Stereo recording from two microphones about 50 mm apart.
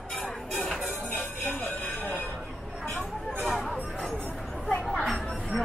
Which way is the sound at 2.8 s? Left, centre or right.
Left.